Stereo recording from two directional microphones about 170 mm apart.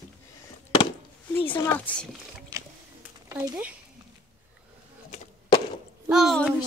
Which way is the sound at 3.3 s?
15° right (ahead or behind).